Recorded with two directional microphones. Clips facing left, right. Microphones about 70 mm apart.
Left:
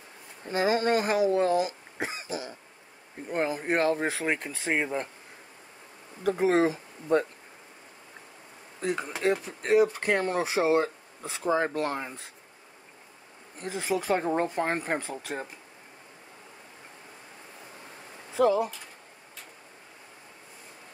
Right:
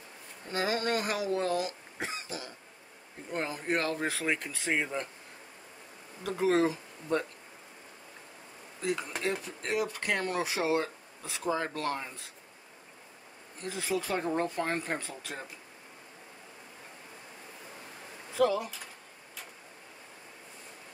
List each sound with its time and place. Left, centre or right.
0.5 s speech: left
6.2 s speech: left
9.2 s speech: left
13.7 s speech: left
18.4 s speech: left